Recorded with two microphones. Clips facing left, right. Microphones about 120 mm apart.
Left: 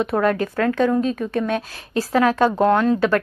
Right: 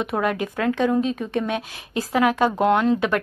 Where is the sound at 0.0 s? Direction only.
15° right (ahead or behind).